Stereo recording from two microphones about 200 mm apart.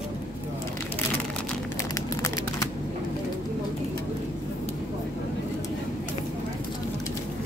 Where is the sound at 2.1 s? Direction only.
15° left (ahead or behind).